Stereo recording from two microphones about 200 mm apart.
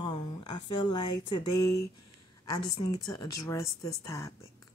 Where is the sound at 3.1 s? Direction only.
15° left (ahead or behind).